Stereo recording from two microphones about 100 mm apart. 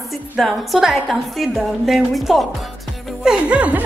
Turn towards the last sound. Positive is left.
turn(degrees=-15)  # may be behind; listen again after turning